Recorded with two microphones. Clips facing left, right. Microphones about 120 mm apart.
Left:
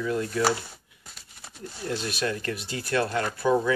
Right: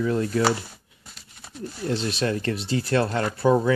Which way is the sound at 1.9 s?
25° right (ahead or behind).